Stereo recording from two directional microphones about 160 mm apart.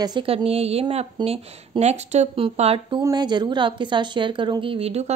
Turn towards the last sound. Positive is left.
turn(degrees=-40)  # may be behind; listen again after turning